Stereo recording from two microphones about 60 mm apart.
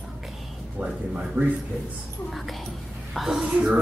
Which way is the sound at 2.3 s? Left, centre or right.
Centre.